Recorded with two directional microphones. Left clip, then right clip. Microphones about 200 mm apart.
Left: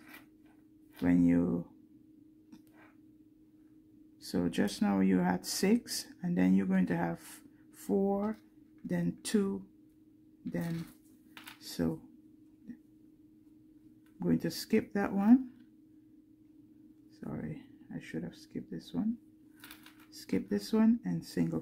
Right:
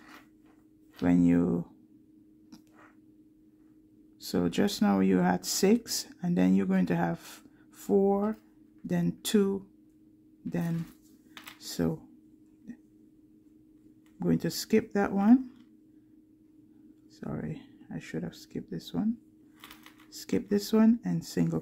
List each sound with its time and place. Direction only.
1.0 s speech: 20° right (ahead or behind)
4.2 s speech: 20° right (ahead or behind)
11.6 s speech: 15° right (ahead or behind)
14.2 s speech: 15° right (ahead or behind)
17.2 s speech: 20° right (ahead or behind)
20.1 s speech: 15° right (ahead or behind)